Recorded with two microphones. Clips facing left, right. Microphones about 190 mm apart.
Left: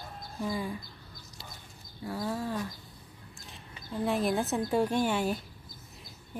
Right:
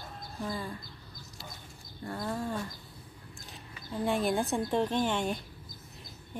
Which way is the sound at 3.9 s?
Centre (ahead or behind).